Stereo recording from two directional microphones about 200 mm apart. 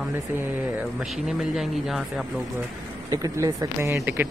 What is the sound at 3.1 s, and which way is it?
Speech, 15° right (ahead or behind).